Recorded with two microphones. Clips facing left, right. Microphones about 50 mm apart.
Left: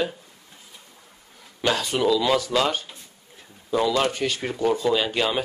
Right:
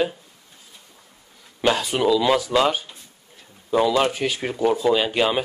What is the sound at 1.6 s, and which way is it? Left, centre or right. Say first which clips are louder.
Speech: right 2 dB; centre.